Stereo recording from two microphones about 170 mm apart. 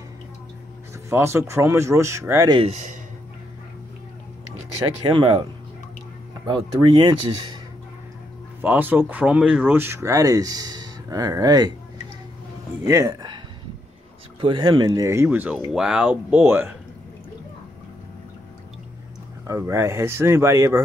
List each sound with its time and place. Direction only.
1.1 s speech: 15° right (ahead or behind)
2.6 s a man's voice: 40° right (ahead or behind)
5.0 s speech: 30° right (ahead or behind)
8.5 s speech: 10° right (ahead or behind)
12.8 s speech: 20° right (ahead or behind)
14.4 s speech: 30° right (ahead or behind); by 16.7 s 15° right (ahead or behind)
19.4 s speech: 15° right (ahead or behind)